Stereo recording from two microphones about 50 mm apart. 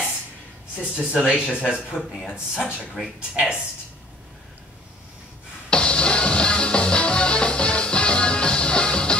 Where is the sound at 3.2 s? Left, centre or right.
Centre.